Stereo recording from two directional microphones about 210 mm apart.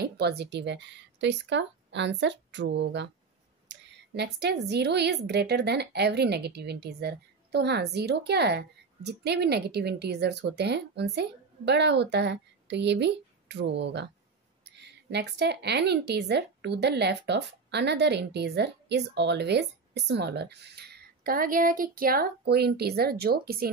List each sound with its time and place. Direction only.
0.0 s a woman's voice: 50° right (ahead or behind)